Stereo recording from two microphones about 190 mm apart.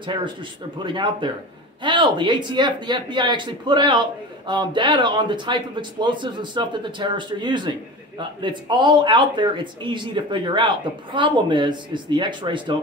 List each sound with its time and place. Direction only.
0.0 s speech: 25° right (ahead or behind)